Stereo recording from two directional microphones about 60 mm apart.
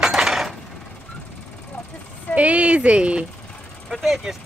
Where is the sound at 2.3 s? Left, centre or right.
Right.